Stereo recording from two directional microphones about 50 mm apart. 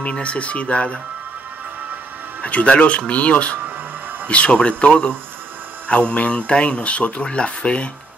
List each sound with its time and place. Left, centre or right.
0.0 s speech: left
2.4 s speech: left